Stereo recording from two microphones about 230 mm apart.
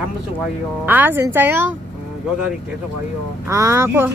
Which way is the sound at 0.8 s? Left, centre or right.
Centre.